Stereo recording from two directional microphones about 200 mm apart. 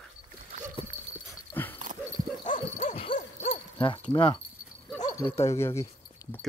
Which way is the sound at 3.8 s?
25° left (ahead or behind).